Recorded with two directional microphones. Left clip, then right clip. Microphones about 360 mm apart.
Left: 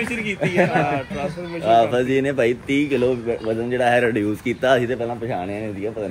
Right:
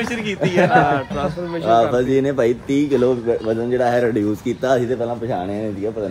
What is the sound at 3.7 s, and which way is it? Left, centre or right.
Speech, centre.